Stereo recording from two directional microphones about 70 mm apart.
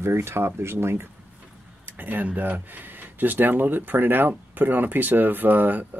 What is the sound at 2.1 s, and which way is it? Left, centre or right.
Speech, right.